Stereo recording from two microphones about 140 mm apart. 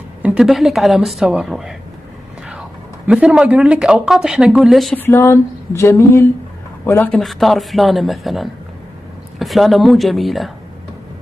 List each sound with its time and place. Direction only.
0.2 s speech: 5° right (ahead or behind)
3.1 s speech: 5° right (ahead or behind)
4.9 s a sound: 15° left (ahead or behind)
7.2 s speech: centre (ahead or behind)